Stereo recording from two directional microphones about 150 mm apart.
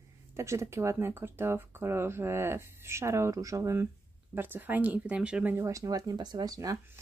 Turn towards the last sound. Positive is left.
turn(degrees=-25)  # may be behind; listen again after turning